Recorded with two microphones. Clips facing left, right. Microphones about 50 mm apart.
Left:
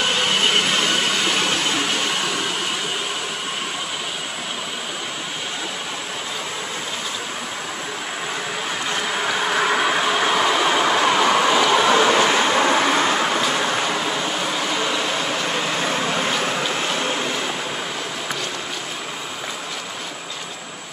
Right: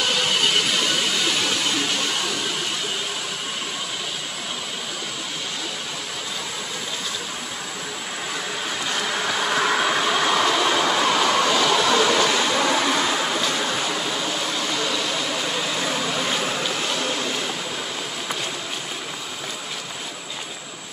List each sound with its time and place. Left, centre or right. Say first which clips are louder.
9.0 s train: left 2 dB; centre; by 13.1 s left
15.5 s vehicle: left 3 dB; left